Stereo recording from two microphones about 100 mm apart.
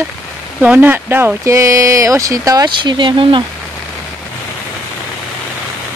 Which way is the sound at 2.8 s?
50° right (ahead or behind).